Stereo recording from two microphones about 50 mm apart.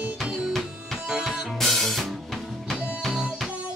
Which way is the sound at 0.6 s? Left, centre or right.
Centre.